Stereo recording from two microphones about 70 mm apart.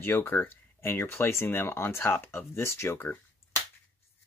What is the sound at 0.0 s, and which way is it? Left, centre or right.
Speech, left.